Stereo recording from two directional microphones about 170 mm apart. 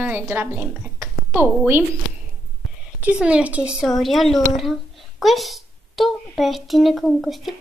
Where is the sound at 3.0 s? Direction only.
5° right (ahead or behind).